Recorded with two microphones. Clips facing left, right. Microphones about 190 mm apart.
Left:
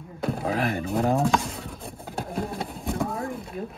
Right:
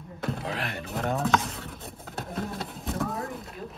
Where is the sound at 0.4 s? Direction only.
50° left (ahead or behind).